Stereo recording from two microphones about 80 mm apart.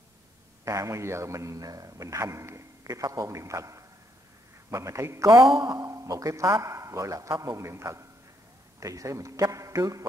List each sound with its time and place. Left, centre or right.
0.7 s a man's voice: right
5.5 s speech: right
5.8 s a man's voice: right